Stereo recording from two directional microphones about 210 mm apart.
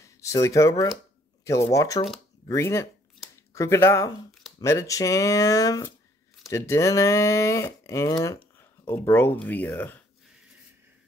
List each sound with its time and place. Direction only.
0.0 s speech: 15° left (ahead or behind)